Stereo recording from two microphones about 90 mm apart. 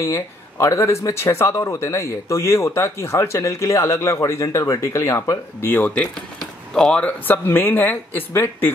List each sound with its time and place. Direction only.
0.0 s speech: 30° left (ahead or behind)
6.4 s speech: 5° left (ahead or behind); by 8.7 s 25° left (ahead or behind)